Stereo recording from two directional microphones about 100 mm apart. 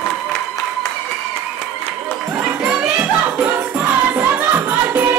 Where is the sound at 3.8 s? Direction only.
20° right (ahead or behind).